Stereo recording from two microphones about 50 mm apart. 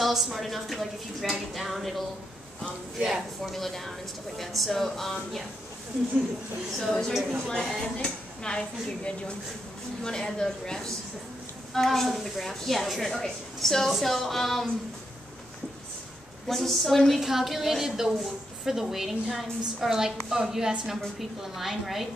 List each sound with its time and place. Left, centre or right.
0.0 s a woman's voice: centre
3.0 s a woman's voice: centre
3.5 s a woman's voice: centre
6.8 s a woman's voice: centre
16.4 s a woman's voice: centre